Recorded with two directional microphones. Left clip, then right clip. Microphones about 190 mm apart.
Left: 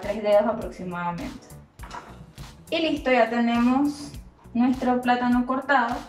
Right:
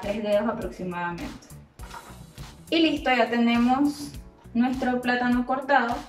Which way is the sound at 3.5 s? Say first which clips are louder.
Even; centre (ahead or behind).